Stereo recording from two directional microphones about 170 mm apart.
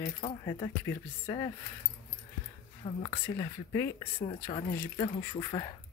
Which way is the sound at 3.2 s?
20° left (ahead or behind).